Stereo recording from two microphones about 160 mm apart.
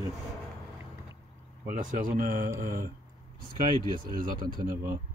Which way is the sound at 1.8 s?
65° right (ahead or behind).